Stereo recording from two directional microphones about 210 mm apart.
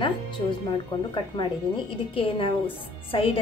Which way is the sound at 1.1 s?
20° left (ahead or behind).